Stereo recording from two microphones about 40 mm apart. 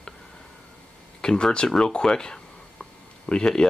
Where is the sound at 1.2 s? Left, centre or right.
Centre.